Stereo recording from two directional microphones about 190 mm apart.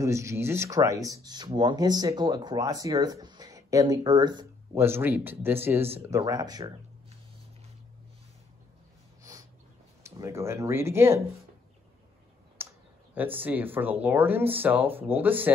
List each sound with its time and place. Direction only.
0.0 s speech: 15° right (ahead or behind)
10.0 s speech: 15° right (ahead or behind)
12.6 s clicking: 10° right (ahead or behind)
13.1 s speech: 10° right (ahead or behind)